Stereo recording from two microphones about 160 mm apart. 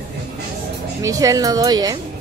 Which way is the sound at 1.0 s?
20° right (ahead or behind).